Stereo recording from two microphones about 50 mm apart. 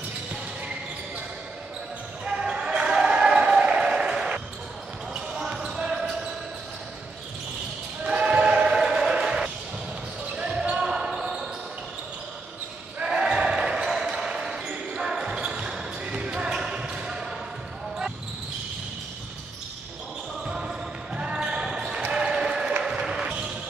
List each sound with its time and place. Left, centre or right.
2.2 s basketball bounce: centre
5.4 s a sound: centre
8.0 s basketball bounce: centre
13.0 s basketball bounce: centre
20.4 s basketball bounce: centre